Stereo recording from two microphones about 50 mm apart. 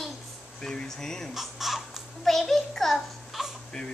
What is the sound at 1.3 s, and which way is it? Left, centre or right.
A child's voice, centre.